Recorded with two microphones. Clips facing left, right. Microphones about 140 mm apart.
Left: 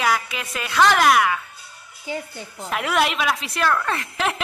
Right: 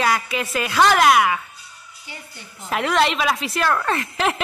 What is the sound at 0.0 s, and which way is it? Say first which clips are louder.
A woman's voice: right 2 dB; centre (ahead or behind).